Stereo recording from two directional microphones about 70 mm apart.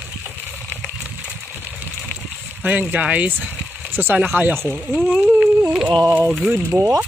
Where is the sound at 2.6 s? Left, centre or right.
Right.